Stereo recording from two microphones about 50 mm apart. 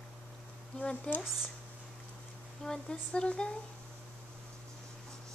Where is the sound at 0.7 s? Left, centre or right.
Left.